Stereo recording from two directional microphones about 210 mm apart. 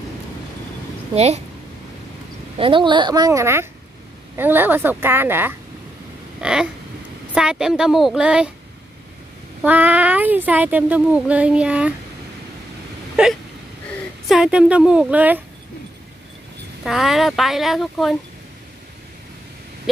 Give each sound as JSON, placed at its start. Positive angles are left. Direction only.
{"t": 1.1, "sound": "a woman's voice", "side_deg": -30}
{"t": 2.5, "sound": "a woman's voice", "side_deg": -25}
{"t": 9.6, "sound": "speech", "side_deg": -10}
{"t": 13.1, "sound": "a sound", "side_deg": 0}
{"t": 14.2, "sound": "speech", "side_deg": 0}
{"t": 16.8, "sound": "speech", "side_deg": 0}